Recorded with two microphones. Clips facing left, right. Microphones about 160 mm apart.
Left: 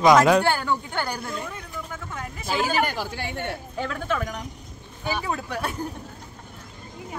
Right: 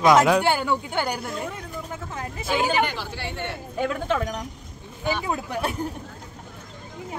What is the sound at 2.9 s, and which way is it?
Speech, 45° left (ahead or behind).